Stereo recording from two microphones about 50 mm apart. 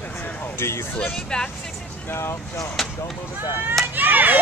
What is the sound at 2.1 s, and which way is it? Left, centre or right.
Speech, left.